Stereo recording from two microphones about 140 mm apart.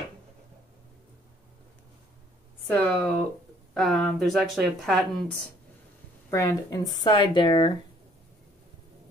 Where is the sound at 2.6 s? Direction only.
10° left (ahead or behind).